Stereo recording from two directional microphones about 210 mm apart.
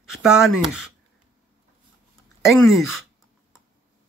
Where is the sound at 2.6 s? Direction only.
Centre (ahead or behind).